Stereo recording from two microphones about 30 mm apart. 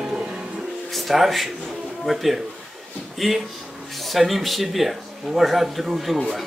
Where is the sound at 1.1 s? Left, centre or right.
Centre.